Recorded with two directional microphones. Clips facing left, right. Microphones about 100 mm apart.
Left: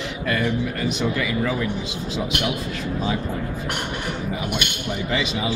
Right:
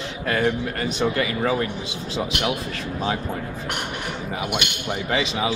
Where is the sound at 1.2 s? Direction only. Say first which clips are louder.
Right 1 dB; 45° right (ahead or behind).